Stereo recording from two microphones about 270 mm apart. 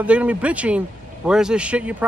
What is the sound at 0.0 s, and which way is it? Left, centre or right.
A man's voice, centre.